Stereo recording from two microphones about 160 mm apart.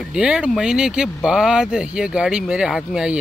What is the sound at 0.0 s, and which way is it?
Speech, 5° right (ahead or behind).